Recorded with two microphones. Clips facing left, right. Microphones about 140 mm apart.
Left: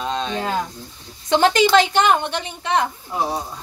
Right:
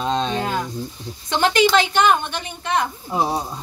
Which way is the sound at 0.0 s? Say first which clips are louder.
Right 3 dB; 30° right (ahead or behind).